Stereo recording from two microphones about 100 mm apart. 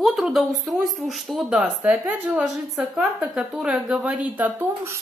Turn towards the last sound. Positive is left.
turn(degrees=-15)  # may be behind; listen again after turning